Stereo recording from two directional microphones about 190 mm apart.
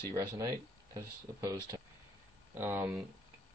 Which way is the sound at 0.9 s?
15° right (ahead or behind).